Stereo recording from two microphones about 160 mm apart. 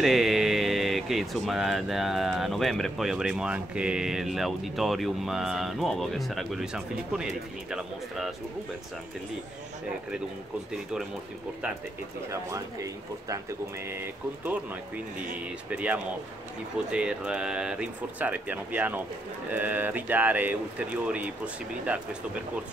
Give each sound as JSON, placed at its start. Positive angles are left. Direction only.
{"t": 0.0, "sound": "speech", "side_deg": 0}
{"t": 12.3, "sound": "speech", "side_deg": -20}
{"t": 15.7, "sound": "speech", "side_deg": -10}